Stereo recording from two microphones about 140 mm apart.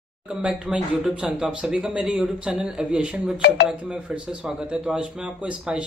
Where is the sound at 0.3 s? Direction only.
5° right (ahead or behind).